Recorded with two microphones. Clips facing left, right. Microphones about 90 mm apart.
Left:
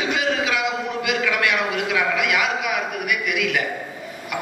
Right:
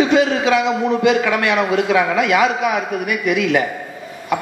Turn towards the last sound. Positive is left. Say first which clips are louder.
# right 7 dB
turn(degrees=-35)  # may be behind; listen again after turning